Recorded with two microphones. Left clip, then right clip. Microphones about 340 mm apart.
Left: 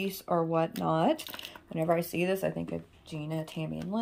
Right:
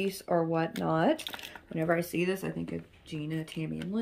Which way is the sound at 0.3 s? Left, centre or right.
Left.